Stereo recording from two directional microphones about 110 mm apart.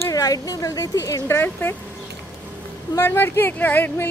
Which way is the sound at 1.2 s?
20° left (ahead or behind).